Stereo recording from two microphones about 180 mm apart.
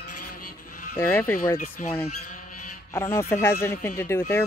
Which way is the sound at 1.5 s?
50° left (ahead or behind).